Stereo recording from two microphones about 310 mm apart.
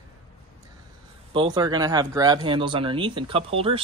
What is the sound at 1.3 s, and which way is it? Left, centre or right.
Speech, centre.